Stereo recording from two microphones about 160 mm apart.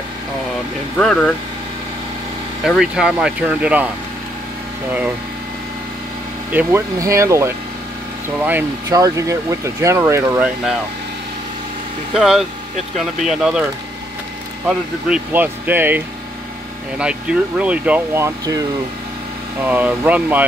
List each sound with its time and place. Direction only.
0.9 s speech: 5° left (ahead or behind)
2.6 s speech: 5° right (ahead or behind)
6.5 s speech: 15° right (ahead or behind)
8.8 s speech: 20° right (ahead or behind)
12.2 s speech: centre (ahead or behind)
14.7 s speech: 5° right (ahead or behind)
17.0 s speech: 5° right (ahead or behind)
19.6 s speech: 10° right (ahead or behind)